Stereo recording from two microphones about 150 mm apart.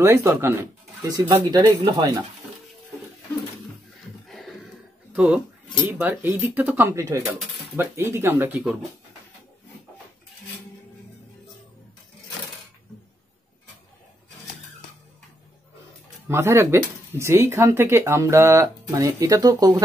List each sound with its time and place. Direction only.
0.0 s speech: 20° right (ahead or behind)
5.1 s speech: 10° right (ahead or behind)
16.3 s speech: 20° right (ahead or behind)